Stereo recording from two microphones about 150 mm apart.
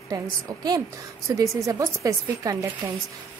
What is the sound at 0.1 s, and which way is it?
Speech, 20° right (ahead or behind).